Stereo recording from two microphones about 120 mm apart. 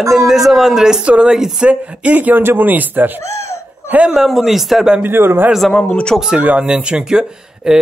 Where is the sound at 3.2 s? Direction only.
25° left (ahead or behind).